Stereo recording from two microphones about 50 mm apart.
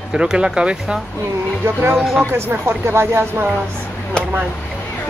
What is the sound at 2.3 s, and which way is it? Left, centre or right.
Speech, right.